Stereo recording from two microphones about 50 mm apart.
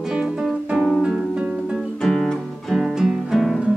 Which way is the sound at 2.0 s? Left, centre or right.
Centre.